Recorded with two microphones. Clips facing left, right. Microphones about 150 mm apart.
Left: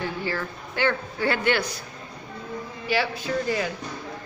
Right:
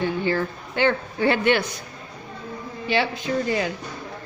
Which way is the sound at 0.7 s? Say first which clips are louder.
Right 4 dB; 20° right (ahead or behind).